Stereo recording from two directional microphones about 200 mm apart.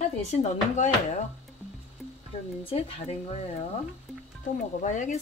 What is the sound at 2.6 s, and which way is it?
Speech, 30° left (ahead or behind).